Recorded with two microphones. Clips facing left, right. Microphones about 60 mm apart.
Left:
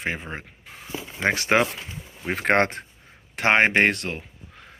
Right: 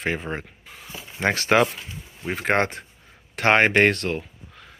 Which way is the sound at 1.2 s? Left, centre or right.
Centre.